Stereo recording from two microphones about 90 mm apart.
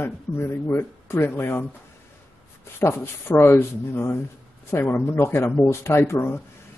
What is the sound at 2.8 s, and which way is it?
A man's voice, 25° left (ahead or behind).